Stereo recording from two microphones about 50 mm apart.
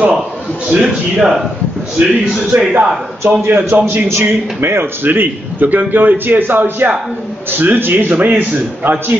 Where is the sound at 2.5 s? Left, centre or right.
Right.